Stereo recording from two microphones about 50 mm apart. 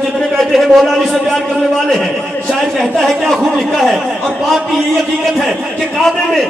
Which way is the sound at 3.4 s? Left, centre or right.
Centre.